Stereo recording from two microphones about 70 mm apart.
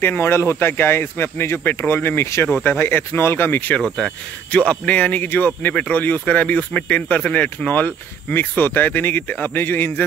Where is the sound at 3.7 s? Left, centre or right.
Centre.